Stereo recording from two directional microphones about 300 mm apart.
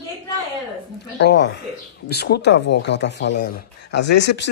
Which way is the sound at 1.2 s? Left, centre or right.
Left.